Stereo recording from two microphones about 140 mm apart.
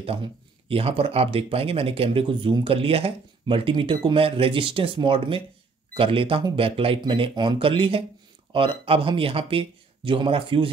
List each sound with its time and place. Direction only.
0.0 s speech: 40° right (ahead or behind)